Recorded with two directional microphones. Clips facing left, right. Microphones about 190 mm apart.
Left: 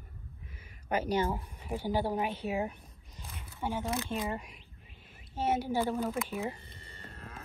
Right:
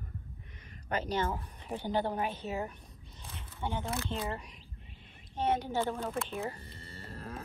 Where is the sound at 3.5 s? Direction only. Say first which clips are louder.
Left 2 dB; centre (ahead or behind).